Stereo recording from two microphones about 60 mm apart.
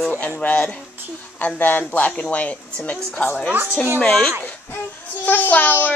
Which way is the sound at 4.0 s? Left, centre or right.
Centre.